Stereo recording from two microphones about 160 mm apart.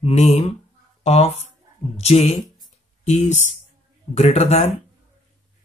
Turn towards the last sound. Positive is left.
turn(degrees=45)  # may be behind; listen again after turning